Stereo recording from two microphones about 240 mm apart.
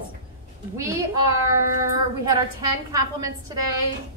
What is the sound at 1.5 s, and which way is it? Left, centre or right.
A woman's voice, centre.